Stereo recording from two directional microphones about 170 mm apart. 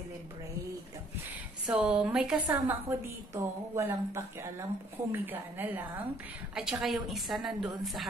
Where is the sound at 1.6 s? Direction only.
5° right (ahead or behind).